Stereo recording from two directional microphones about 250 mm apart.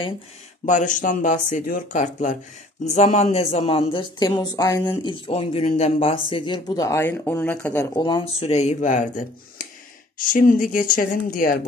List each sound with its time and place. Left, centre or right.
0.7 s speech: left